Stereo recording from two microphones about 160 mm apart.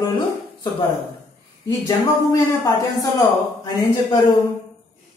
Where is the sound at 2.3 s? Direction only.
20° left (ahead or behind).